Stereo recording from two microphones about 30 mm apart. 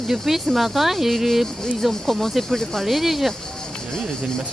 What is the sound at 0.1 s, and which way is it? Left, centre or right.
Speech, centre.